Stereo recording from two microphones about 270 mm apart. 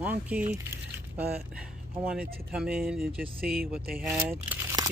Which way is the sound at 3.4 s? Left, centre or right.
Right.